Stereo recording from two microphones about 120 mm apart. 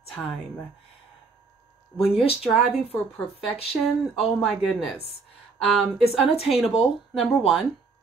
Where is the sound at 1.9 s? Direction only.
25° left (ahead or behind).